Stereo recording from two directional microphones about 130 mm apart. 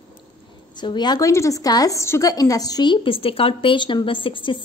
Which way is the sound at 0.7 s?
35° left (ahead or behind).